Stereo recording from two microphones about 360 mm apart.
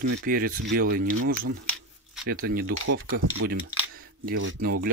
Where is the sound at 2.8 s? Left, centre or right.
Right.